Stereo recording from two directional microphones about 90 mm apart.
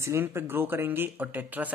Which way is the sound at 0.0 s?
30° right (ahead or behind).